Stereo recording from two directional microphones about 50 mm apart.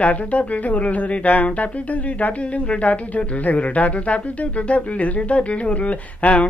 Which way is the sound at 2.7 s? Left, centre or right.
Left.